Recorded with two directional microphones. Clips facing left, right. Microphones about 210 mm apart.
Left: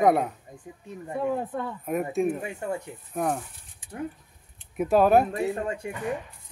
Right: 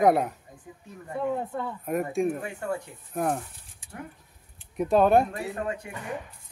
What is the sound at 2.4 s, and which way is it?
Speech, 20° left (ahead or behind).